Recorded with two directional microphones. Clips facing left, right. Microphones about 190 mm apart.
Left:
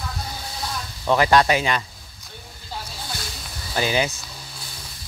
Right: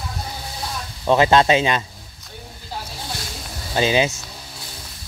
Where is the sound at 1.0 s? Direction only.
20° right (ahead or behind).